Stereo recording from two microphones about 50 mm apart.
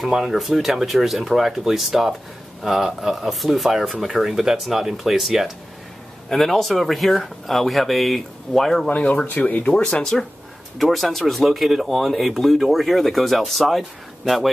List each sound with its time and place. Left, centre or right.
0.0 s speech: centre
8.8 s speech: left
10.1 s speech: centre